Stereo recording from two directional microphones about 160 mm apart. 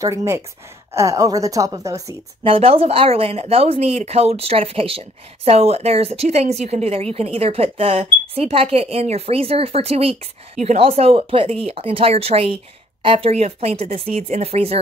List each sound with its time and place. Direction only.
0.0 s a woman's voice: 20° right (ahead or behind)
2.4 s speech: 35° right (ahead or behind)